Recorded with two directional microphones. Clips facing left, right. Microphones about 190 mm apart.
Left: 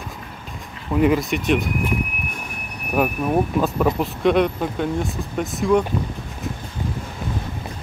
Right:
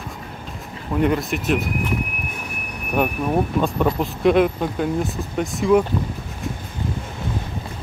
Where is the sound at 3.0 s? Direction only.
5° left (ahead or behind).